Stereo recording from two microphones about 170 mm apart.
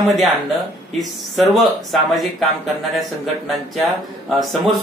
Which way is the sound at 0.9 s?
Centre (ahead or behind).